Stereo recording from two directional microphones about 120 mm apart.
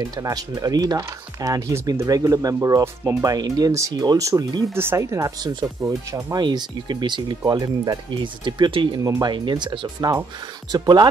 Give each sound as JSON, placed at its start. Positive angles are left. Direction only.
{"t": 0.0, "sound": "speech", "side_deg": -30}
{"t": 6.4, "sound": "speech", "side_deg": -40}
{"t": 9.0, "sound": "speech", "side_deg": -30}